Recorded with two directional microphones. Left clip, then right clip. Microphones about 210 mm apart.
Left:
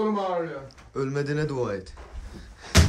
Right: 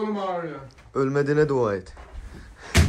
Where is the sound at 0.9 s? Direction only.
Centre (ahead or behind).